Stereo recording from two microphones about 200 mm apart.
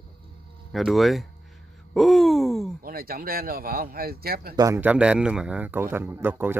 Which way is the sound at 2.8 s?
45° right (ahead or behind).